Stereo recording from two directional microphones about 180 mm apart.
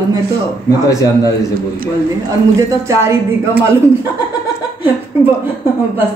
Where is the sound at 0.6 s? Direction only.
20° left (ahead or behind).